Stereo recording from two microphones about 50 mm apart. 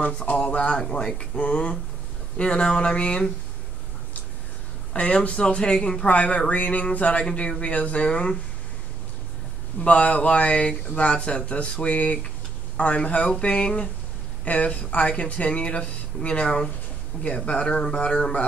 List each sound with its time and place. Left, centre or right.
0.0 s speech: left
4.9 s speech: left
9.8 s speech: left